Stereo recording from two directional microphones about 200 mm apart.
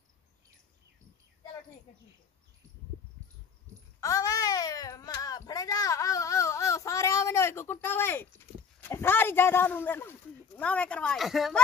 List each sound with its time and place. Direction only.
4.0 s baby cry: 15° left (ahead or behind)
8.8 s speech: 10° left (ahead or behind)